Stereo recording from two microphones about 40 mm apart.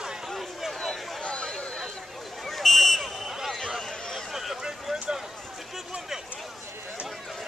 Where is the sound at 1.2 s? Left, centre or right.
Left.